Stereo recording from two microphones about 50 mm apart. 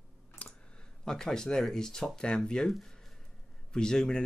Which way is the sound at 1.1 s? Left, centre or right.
Centre.